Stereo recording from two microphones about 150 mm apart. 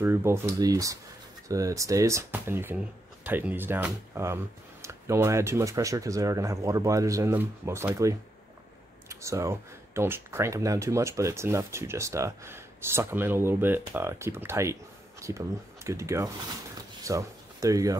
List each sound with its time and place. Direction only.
0.0 s speech: 15° right (ahead or behind)